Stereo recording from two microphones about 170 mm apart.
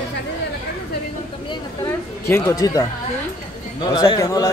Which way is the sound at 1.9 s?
15° left (ahead or behind).